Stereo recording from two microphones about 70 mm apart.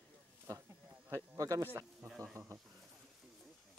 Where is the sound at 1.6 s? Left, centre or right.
Right.